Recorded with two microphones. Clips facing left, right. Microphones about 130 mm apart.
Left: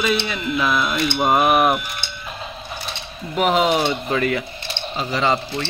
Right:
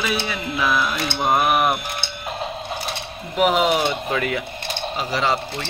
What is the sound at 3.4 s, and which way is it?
Speech, 5° right (ahead or behind).